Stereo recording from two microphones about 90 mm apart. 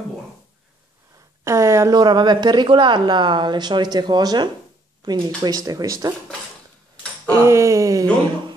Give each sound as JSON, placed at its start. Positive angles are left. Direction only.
{"t": 1.4, "sound": "speech", "side_deg": -35}
{"t": 2.0, "sound": "speech", "side_deg": -55}
{"t": 7.2, "sound": "a sound", "side_deg": -35}